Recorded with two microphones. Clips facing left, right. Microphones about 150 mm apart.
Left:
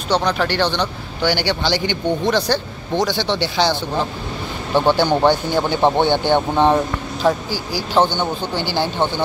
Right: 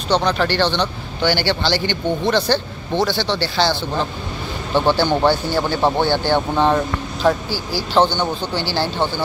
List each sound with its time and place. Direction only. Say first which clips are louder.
0.1 s a man's voice: right 1 dB; 10° left (ahead or behind)